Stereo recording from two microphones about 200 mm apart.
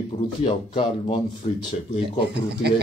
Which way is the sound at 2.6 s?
55° right (ahead or behind).